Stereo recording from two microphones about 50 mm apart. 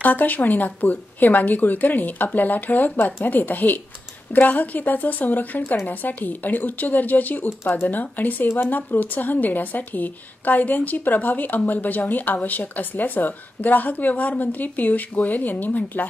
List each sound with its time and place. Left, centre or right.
0.0 s a woman's voice: left